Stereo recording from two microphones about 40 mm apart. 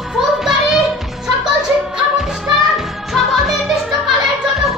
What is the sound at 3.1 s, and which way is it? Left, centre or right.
Music, centre.